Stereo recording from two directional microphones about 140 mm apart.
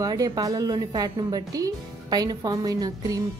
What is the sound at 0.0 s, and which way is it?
A woman's voice, 25° right (ahead or behind).